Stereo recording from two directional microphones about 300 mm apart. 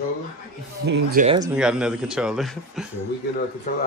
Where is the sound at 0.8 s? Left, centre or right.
Right.